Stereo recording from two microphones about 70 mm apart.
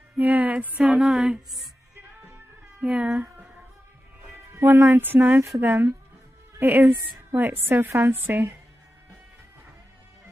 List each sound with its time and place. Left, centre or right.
0.2 s music: right
1.0 s speech: centre
2.8 s speech: centre
4.6 s a woman's voice: right